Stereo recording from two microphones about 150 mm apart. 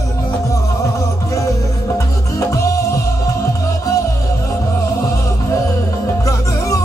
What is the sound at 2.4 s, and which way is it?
Music, 20° left (ahead or behind).